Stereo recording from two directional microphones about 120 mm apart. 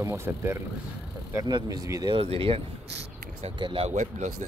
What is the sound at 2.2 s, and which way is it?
Speech, 50° right (ahead or behind).